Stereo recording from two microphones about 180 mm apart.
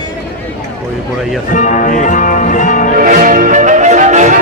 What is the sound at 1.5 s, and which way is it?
Music, 45° left (ahead or behind).